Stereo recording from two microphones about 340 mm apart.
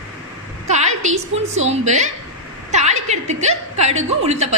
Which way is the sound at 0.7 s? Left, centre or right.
Right.